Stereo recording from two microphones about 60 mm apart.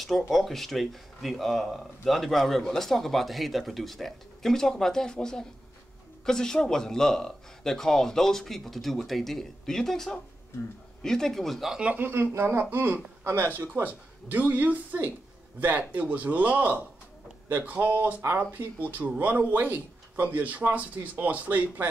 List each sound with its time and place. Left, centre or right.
0.3 s speech: centre
11.8 s a man's voice: right
12.1 s speech: right
13.8 s a man's voice: right